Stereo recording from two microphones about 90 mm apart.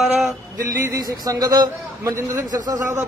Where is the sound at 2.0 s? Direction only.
35° right (ahead or behind).